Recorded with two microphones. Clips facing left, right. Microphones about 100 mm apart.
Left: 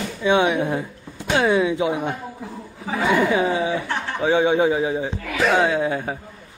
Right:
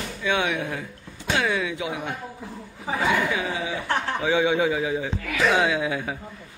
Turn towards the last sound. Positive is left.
turn(degrees=35)  # may be behind; listen again after turning